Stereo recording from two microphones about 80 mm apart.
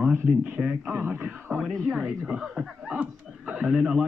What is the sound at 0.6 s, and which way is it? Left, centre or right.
Speech, centre.